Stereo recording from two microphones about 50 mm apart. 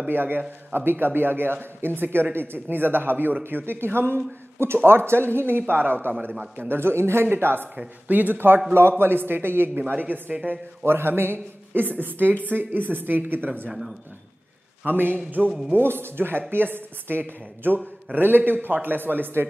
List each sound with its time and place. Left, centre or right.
0.1 s speech: right
5.6 s a man's voice: right
6.7 s a man's voice: right
8.7 s speech: right
10.9 s a man's voice: right
14.9 s a man's voice: right
15.7 s a man's voice: right